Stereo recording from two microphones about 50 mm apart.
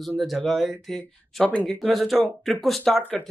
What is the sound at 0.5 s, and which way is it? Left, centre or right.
Speech, centre.